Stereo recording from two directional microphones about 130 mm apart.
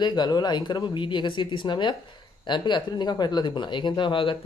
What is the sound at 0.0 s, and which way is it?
Speech, 35° left (ahead or behind).